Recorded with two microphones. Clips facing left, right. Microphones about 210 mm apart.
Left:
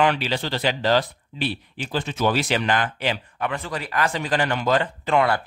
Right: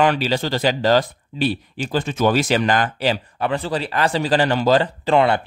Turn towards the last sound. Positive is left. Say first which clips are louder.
# right 4 dB
turn(degrees=-25)  # may be behind; listen again after turning